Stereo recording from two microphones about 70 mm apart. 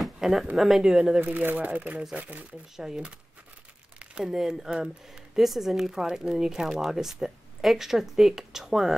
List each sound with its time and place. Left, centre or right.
0.0 s a sound: centre
0.6 s speech: centre
1.2 s speech: right; by 8.9 s centre